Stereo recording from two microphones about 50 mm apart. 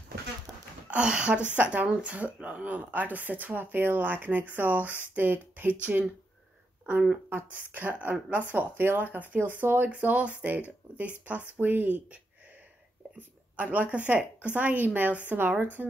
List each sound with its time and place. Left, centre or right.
0.8 s a woman's voice: right
7.2 s speech: right
13.6 s speech: right